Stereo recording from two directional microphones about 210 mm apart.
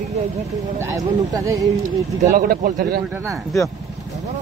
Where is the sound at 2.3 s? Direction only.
45° right (ahead or behind).